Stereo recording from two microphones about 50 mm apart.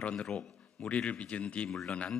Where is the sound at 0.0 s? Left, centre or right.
Left.